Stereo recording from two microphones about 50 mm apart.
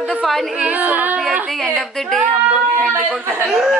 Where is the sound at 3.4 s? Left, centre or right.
Centre.